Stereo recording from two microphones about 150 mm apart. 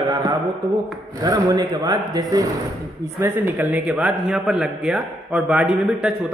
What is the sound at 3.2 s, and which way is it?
A man's voice, 15° right (ahead or behind).